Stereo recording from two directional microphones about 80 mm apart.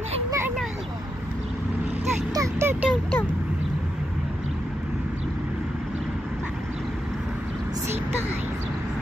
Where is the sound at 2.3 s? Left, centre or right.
Right.